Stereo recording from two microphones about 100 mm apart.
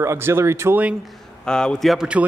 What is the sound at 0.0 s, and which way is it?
Speech, 25° right (ahead or behind).